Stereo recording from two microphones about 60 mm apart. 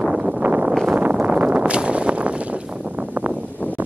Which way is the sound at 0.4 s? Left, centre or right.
Right.